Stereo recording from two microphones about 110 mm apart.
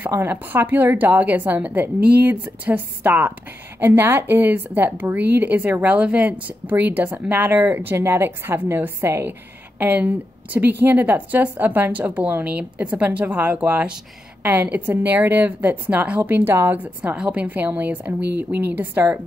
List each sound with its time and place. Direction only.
0.0 s a woman's voice: 20° right (ahead or behind)